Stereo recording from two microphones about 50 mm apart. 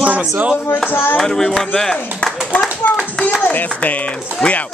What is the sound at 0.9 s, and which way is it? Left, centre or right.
Speech, left.